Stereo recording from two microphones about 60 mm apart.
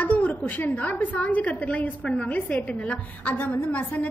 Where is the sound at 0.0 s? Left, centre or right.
Left.